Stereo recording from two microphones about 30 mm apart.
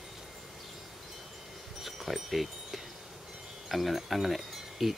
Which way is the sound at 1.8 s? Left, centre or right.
Centre.